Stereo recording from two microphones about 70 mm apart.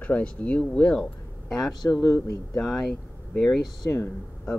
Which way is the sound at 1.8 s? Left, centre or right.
Left.